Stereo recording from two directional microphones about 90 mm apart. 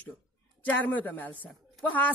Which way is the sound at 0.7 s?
20° left (ahead or behind).